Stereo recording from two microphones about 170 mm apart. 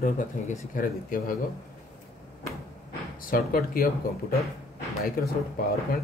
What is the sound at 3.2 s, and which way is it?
Speech, 55° left (ahead or behind).